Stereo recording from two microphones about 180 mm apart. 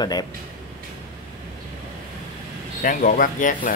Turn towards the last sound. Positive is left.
turn(degrees=45)  # may be behind; listen again after turning